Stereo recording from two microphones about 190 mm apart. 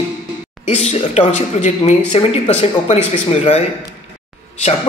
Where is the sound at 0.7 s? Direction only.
35° left (ahead or behind).